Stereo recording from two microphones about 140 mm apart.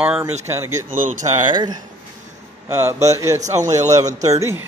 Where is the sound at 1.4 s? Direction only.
35° right (ahead or behind).